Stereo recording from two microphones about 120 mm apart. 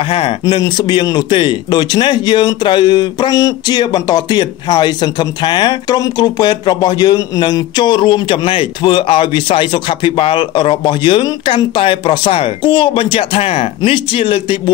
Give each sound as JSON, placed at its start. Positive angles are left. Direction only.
{"t": 0.0, "sound": "speech", "side_deg": 50}